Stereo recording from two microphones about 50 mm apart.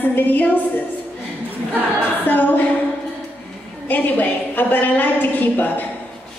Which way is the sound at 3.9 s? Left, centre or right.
Left.